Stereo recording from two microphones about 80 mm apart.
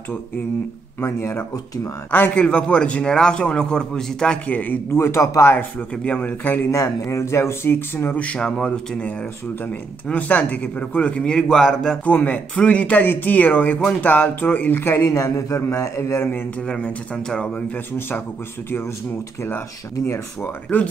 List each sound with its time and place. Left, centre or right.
1.0 s speech: left
2.0 s speech: left
2.4 s a man's voice: centre
4.8 s speech: left
5.5 s speech: centre
6.7 s speech: left
8.2 s a man's voice: centre
10.0 s a man's voice: centre
12.0 s speech: centre; by 16.2 s left
16.2 s speech: left
16.6 s a man's voice: centre
20.4 s speech: left